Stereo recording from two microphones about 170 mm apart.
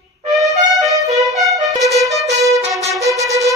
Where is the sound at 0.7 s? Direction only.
Centre (ahead or behind).